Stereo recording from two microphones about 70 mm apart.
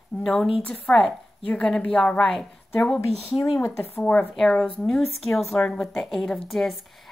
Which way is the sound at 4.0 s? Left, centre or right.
Centre.